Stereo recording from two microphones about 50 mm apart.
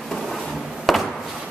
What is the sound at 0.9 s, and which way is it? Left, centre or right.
Chop, centre.